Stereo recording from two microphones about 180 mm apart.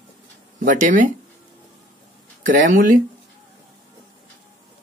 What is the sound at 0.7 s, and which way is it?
Speech, 45° right (ahead or behind).